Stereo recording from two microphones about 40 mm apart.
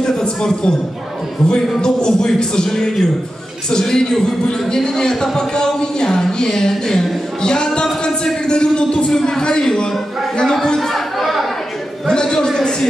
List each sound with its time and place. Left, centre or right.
0.0 s a sound: centre
1.5 s a man's voice: centre
9.1 s a man's voice: centre
10.9 s chatter: centre
12.1 s a man's voice: centre